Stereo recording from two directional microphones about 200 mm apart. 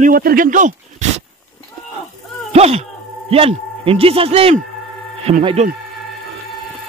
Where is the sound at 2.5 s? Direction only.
30° right (ahead or behind).